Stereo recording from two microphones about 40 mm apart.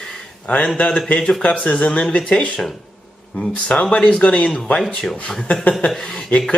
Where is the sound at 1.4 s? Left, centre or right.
Left.